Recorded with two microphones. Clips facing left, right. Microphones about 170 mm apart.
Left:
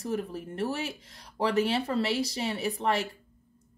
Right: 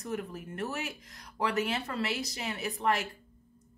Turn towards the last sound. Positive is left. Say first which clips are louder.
# left 2 dB
turn(degrees=30)  # may be behind; listen again after turning